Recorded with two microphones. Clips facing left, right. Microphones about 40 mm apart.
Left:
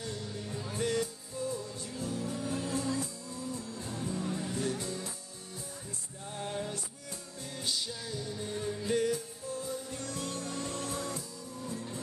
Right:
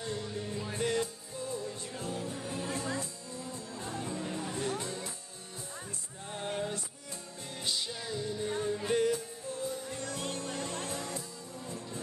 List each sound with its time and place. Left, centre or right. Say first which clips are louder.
0.0 s music: right 3 dB; right
6.2 s music: right 1 dB; right